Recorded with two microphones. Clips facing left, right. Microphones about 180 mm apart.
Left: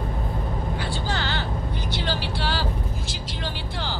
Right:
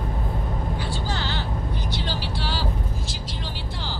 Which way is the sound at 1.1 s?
65° left (ahead or behind).